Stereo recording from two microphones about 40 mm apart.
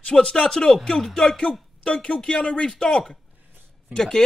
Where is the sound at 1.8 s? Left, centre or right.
Left.